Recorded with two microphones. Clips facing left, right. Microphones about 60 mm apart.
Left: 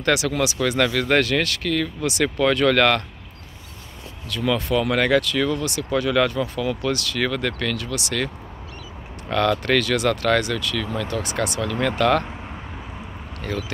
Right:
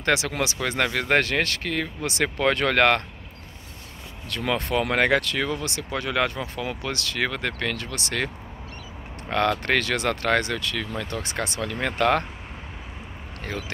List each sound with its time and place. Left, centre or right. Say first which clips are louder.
0.0 s speech: left 3 dB; right
0.6 s speech: left 4 dB; right
4.3 s speech: left 3 dB; right
5.8 s speech: left 6 dB; right
7.7 s speech: left 3 dB; right
9.3 s speech: left 3 dB; right
13.4 s speech: left 4 dB; right